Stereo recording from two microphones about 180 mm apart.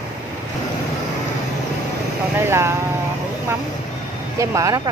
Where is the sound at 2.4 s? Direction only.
15° right (ahead or behind).